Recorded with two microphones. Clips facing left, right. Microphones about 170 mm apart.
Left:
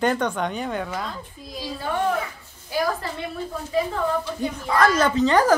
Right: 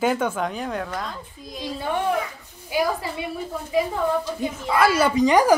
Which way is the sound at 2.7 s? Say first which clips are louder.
Right 1 dB; 10° right (ahead or behind).